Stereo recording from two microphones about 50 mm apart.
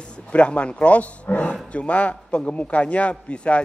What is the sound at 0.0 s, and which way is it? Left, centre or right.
A man's voice, left.